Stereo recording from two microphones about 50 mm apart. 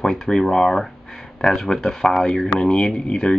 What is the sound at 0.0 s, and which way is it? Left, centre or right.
Speech, centre.